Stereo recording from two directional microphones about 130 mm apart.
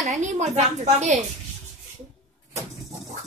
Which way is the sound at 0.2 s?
60° right (ahead or behind).